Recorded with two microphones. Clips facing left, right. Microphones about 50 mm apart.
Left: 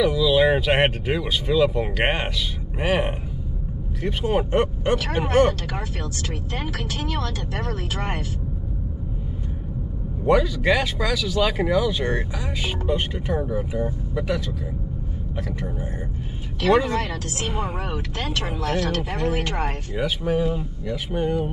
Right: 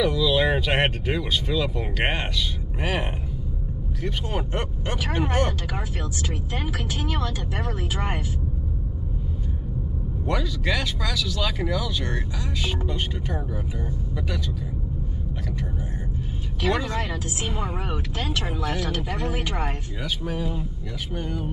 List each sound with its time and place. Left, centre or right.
0.0 s speech: centre
7.1 s speech: centre
10.2 s speech: centre
16.7 s speech: centre
18.3 s speech: centre
19.5 s speech: centre